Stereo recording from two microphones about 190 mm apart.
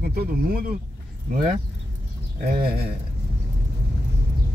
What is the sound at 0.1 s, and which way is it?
Speech, 55° right (ahead or behind).